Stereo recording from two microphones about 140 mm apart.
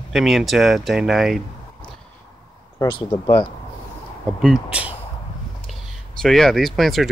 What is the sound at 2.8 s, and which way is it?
Speech, 35° left (ahead or behind).